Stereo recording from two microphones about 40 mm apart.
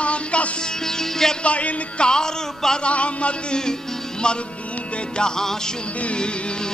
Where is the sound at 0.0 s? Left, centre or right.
Left.